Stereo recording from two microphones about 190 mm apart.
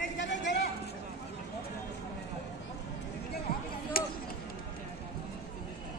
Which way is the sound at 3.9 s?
50° left (ahead or behind).